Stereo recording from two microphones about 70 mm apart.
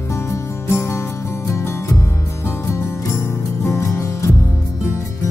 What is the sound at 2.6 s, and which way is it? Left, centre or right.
Music, left.